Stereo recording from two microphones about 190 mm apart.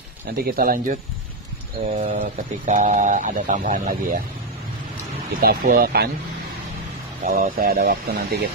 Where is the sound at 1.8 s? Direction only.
35° right (ahead or behind).